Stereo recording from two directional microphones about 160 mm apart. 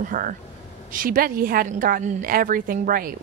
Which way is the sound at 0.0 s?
60° right (ahead or behind).